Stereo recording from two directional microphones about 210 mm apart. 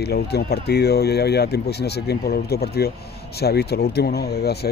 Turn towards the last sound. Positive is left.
turn(degrees=50)  # may be behind; listen again after turning